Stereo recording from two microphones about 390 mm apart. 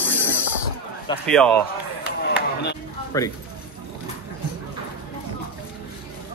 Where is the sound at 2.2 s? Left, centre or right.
Left.